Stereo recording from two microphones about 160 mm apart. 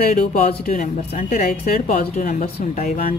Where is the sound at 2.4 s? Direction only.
45° left (ahead or behind).